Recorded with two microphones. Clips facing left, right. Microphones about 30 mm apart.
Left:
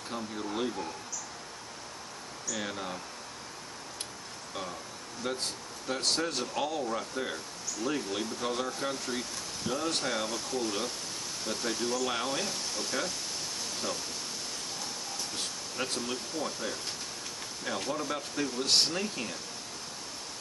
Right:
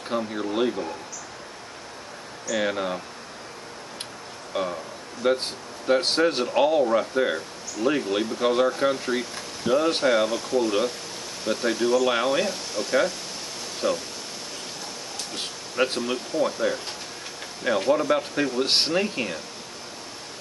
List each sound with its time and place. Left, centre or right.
0.1 s speech: right
2.5 s speech: right
4.6 s speech: right
15.3 s speech: right